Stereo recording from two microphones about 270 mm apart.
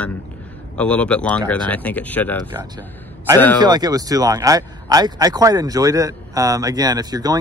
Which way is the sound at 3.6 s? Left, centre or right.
Centre.